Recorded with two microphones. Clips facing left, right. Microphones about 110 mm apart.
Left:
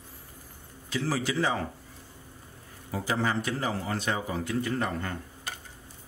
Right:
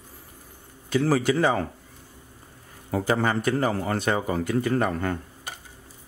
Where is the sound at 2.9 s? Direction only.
55° right (ahead or behind).